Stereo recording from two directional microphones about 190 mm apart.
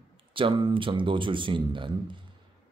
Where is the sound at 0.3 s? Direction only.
25° right (ahead or behind).